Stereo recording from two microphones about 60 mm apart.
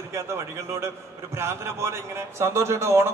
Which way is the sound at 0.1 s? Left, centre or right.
Right.